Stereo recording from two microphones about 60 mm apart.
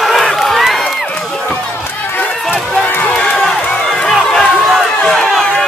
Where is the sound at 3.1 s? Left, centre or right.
Centre.